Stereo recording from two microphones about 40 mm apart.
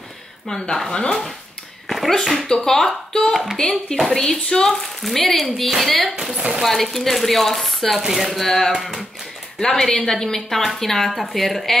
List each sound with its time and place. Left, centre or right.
0.5 s speech: centre
1.9 s speech: centre
2.3 s speech: centre
3.7 s speech: centre
4.1 s speech: centre
8.4 s speech: centre